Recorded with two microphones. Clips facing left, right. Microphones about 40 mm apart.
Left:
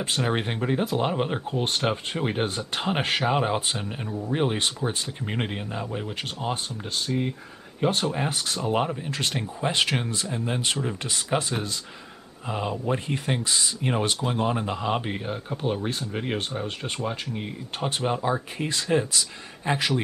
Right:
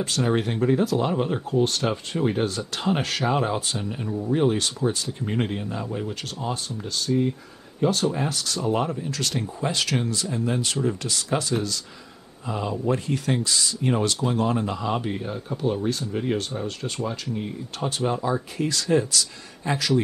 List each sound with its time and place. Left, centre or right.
0.0 s speech: left
6.4 s speech: left